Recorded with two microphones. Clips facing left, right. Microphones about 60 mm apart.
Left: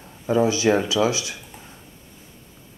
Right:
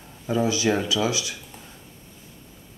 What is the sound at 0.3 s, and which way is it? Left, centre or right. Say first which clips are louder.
Speech: left 4 dB; left.